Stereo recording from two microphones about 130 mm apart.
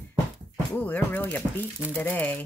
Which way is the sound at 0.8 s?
15° left (ahead or behind).